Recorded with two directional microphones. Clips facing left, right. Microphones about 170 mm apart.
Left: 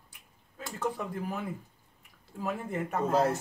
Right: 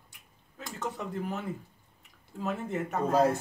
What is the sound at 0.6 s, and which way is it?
Speech, 5° left (ahead or behind).